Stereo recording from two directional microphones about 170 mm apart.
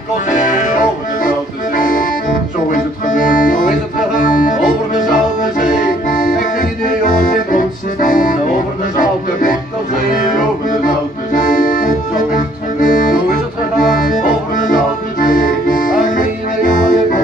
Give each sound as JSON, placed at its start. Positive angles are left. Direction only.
{"t": 0.5, "sound": "music", "side_deg": 50}
{"t": 1.8, "sound": "accordion", "side_deg": 50}
{"t": 2.7, "sound": "music", "side_deg": 50}
{"t": 4.2, "sound": "accordion", "side_deg": 50}
{"t": 9.0, "sound": "music", "side_deg": 50}
{"t": 11.3, "sound": "accordion", "side_deg": 50}